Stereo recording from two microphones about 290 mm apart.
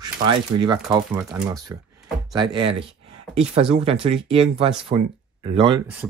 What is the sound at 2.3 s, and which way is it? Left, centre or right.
Speech, centre.